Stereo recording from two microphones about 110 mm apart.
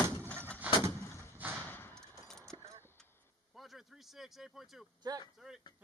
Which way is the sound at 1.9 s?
5° left (ahead or behind).